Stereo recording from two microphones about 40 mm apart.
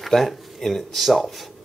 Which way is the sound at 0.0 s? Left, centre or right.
Centre.